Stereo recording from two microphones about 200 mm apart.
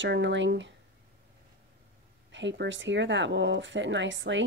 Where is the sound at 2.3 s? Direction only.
65° right (ahead or behind).